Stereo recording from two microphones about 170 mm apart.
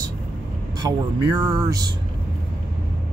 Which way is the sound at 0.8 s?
25° right (ahead or behind).